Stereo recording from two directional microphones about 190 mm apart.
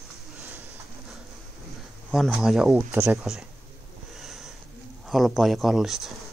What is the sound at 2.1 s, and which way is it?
Speech, centre (ahead or behind).